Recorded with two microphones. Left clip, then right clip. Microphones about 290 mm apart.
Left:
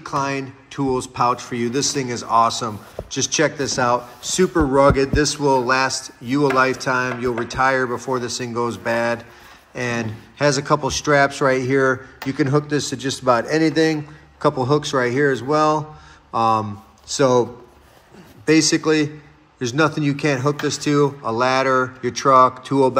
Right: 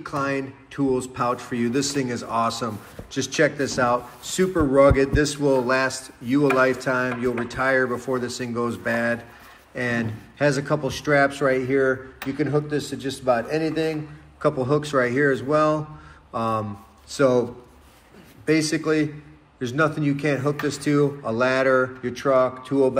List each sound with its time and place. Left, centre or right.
0.0 s a man's voice: centre